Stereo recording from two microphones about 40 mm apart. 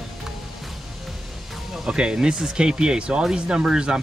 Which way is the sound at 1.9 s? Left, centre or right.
Right.